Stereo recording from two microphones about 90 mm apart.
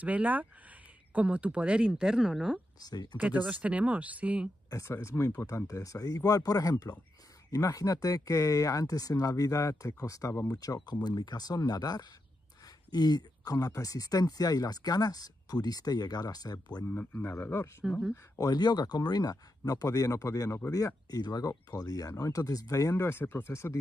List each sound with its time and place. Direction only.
0.0 s speech: 15° right (ahead or behind)
2.8 s speech: 50° left (ahead or behind)
3.4 s speech: 15° right (ahead or behind)
4.6 s speech: 35° left (ahead or behind)
16.9 s speech: 20° left (ahead or behind)
18.1 s speech: 40° left (ahead or behind)
22.9 s speech: 25° left (ahead or behind)